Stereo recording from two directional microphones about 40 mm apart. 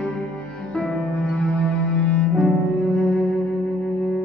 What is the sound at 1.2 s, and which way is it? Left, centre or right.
Music, left.